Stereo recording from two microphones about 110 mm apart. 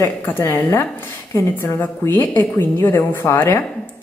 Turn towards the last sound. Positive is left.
turn(degrees=25)  # may be behind; listen again after turning